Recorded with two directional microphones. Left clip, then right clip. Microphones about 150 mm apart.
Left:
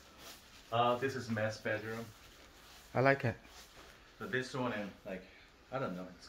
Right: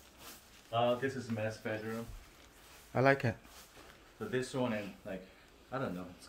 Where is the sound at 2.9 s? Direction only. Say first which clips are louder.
Right 1 dB; 10° right (ahead or behind).